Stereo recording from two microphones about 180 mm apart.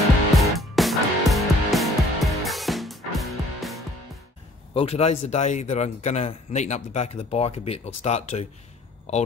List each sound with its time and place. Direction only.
0.4 s music: centre (ahead or behind)
4.7 s a man's voice: 35° left (ahead or behind)